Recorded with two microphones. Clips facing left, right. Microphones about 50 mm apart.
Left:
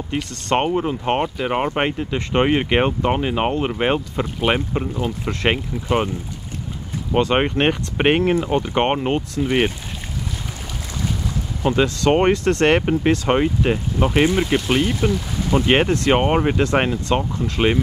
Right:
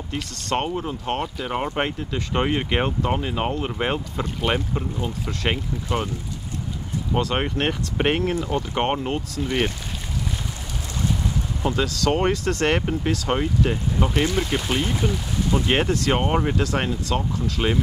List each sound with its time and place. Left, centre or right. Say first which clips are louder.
0.1 s speech: left 5 dB; left
3.7 s speech: left 5 dB; left
4.9 s speech: left 4 dB; left
7.2 s speech: left 6 dB; left
9.4 s speech: left 5 dB; centre
11.6 s speech: left 5 dB; left
13.9 s speech: left 6 dB; left